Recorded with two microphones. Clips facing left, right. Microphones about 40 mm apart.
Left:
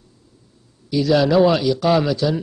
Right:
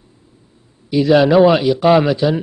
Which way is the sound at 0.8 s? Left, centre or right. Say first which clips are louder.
Right 5 dB; right.